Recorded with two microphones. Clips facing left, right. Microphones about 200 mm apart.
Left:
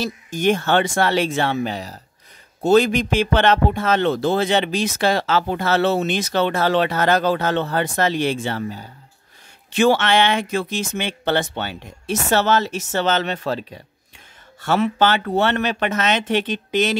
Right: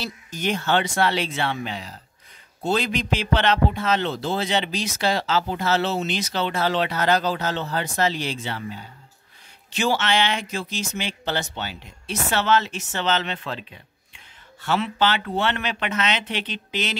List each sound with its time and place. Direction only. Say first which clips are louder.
0.0 s speech: left 8 dB; 50° left (ahead or behind)
9.8 s speech: left 6 dB; 55° left (ahead or behind)